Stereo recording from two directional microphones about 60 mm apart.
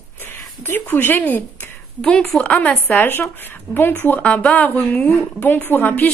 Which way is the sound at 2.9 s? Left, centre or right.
Left.